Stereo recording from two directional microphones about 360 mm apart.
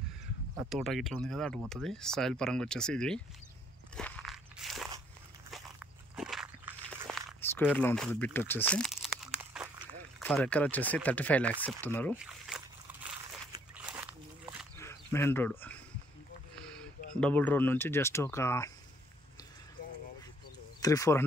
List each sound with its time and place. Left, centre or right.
0.7 s speech: centre
3.9 s crunch: centre
6.1 s a sound: centre
10.1 s speech: centre
11.1 s a sound: centre
16.6 s speech: centre
20.8 s speech: centre